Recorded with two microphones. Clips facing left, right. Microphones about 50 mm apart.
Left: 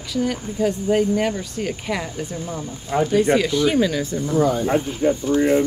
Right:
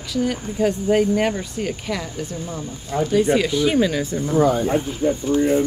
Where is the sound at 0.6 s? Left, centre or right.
Right.